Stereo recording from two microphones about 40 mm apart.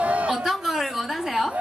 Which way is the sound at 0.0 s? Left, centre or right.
Right.